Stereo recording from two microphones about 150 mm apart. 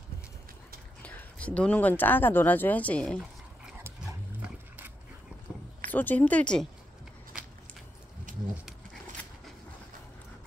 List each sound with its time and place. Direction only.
1.0 s speech: 10° left (ahead or behind)
3.8 s dog: 15° right (ahead or behind)
5.9 s speech: 10° left (ahead or behind)
8.3 s a sound: 60° right (ahead or behind)